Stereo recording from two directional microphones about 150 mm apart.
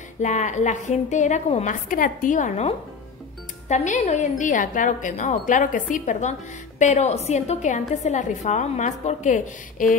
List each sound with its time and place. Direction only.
0.2 s a woman's voice: 55° left (ahead or behind)